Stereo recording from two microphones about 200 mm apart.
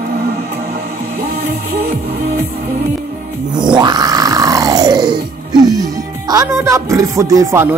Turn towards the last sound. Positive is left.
turn(degrees=-15)  # may be behind; listen again after turning